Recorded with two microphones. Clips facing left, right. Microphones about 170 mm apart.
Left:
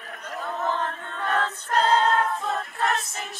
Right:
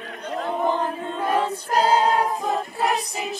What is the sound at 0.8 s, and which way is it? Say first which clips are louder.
Chant: right 5 dB; 15° right (ahead or behind).